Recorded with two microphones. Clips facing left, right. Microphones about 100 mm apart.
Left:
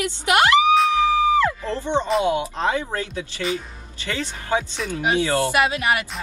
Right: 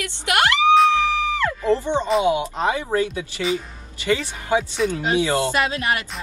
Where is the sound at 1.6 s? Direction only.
15° right (ahead or behind).